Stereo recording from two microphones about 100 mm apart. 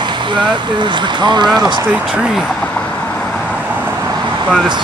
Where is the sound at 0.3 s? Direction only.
50° right (ahead or behind).